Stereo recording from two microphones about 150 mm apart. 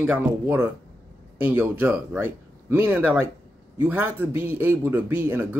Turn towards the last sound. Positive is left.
turn(degrees=-15)  # may be behind; listen again after turning